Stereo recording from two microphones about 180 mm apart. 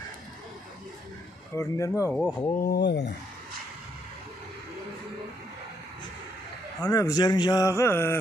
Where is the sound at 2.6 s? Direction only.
65° left (ahead or behind).